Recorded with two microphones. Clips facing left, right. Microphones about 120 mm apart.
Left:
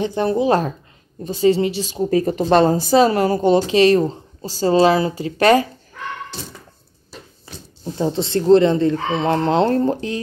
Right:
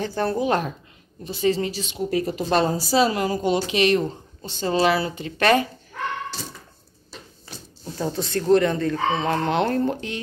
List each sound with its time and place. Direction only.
0.0 s speech: 20° left (ahead or behind)
0.5 s speech: 35° left (ahead or behind)
1.5 s a woman's voice: 30° left (ahead or behind); by 3.6 s 50° left (ahead or behind)
3.7 s speech: 35° left (ahead or behind)
7.8 s speech: 25° left (ahead or behind)